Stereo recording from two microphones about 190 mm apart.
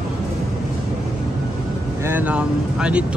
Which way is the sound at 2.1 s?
10° right (ahead or behind).